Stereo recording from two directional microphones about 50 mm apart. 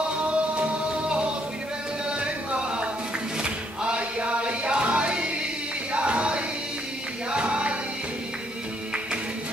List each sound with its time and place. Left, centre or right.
0.3 s music: right